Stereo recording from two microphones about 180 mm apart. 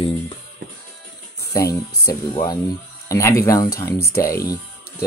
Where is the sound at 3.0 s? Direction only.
15° left (ahead or behind).